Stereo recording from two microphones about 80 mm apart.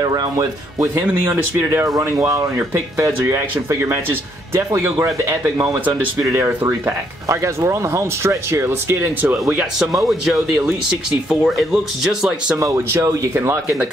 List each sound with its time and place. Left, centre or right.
0.0 s speech: right
1.3 s speech: right
2.0 s speech: right
7.2 s speech: right
9.8 s a man's voice: centre
12.5 s speech: right